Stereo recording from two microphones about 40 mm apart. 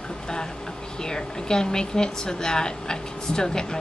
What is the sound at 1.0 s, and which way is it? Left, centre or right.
Speech, centre.